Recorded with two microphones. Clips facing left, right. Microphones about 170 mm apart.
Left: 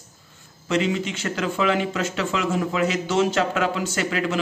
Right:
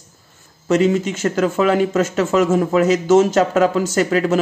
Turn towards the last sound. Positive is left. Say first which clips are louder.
# right 8 dB
turn(degrees=-40)  # may be behind; listen again after turning